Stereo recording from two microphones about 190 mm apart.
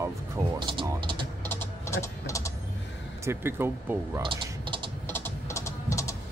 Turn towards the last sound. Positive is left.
turn(degrees=15)  # may be behind; listen again after turning